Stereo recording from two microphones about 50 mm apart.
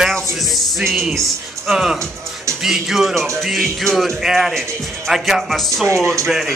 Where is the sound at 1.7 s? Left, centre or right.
Centre.